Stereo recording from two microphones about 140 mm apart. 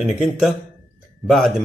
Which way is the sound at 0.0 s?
Centre (ahead or behind).